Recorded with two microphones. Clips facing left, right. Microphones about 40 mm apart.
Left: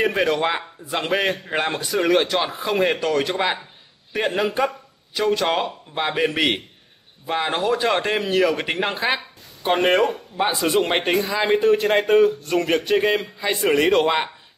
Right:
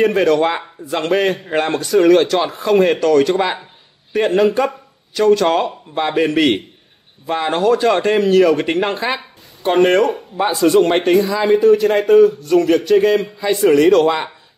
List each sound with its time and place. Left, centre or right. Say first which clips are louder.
0.0 s a man's voice: right 6 dB; centre
11.4 s a man's voice: right 5 dB; left